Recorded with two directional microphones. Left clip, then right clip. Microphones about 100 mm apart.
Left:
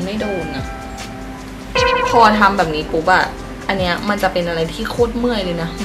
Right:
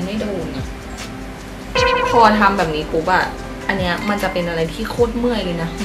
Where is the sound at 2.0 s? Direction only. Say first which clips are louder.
Left 1 dB; 10° left (ahead or behind).